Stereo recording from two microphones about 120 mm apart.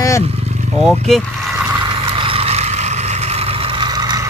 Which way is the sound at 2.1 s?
50° right (ahead or behind).